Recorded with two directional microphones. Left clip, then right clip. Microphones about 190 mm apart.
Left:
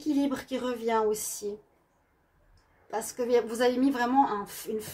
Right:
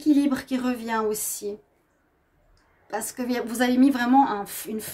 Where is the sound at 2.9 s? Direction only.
55° right (ahead or behind).